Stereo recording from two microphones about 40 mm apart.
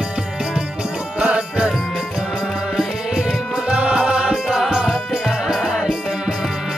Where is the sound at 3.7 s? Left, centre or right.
Right.